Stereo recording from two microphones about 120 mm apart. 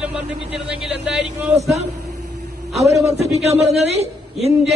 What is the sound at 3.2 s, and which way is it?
Speech, 65° right (ahead or behind).